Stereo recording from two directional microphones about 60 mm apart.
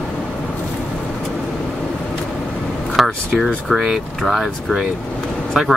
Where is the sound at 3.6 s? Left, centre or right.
Centre.